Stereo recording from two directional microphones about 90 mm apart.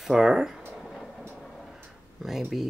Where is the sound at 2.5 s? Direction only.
Centre (ahead or behind).